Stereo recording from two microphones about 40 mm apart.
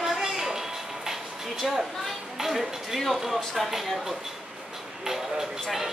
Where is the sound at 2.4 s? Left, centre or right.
Centre.